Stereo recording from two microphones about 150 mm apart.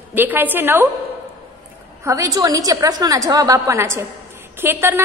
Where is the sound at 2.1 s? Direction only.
20° right (ahead or behind).